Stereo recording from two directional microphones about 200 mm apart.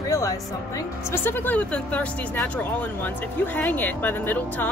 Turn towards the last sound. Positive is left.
turn(degrees=10)  # may be behind; listen again after turning